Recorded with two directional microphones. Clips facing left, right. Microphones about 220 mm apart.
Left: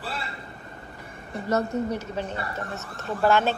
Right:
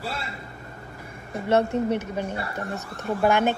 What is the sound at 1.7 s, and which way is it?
Speech, 30° right (ahead or behind).